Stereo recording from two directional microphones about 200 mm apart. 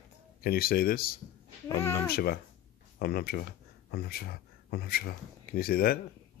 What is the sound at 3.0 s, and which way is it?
Speech, 50° left (ahead or behind).